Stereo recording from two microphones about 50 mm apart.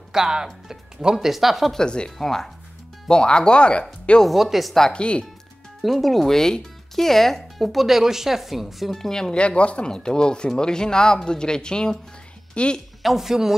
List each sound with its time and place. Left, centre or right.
0.1 s speech: centre
1.8 s speech: centre
4.2 s speech: centre
4.7 s speech: centre
5.8 s speech: centre; by 12.8 s left
13.0 s speech: centre